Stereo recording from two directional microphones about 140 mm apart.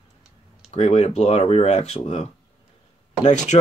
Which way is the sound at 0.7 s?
50° left (ahead or behind).